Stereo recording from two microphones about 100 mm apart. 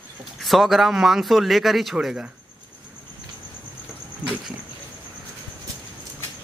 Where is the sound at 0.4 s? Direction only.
Centre (ahead or behind).